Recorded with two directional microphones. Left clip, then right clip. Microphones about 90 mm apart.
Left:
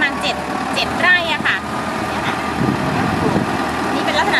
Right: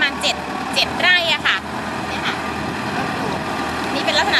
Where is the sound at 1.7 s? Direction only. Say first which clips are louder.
Left 3 dB; 10° left (ahead or behind).